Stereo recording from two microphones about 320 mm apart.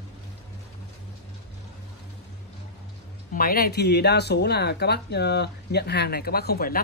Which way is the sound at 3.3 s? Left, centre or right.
Left.